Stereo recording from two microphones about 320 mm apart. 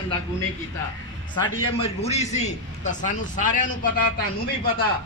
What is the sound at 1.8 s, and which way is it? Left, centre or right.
A man's voice, centre.